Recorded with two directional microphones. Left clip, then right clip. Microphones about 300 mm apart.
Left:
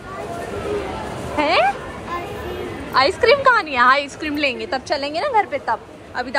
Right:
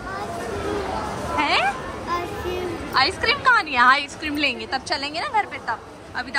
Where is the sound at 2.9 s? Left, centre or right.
Centre.